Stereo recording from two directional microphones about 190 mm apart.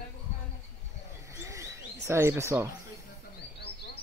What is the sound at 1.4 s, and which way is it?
Bird, 15° right (ahead or behind).